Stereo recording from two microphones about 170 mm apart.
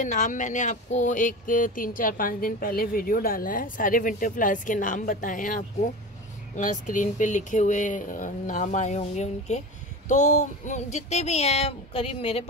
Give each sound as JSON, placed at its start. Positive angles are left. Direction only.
{"t": 0.0, "sound": "speech", "side_deg": 45}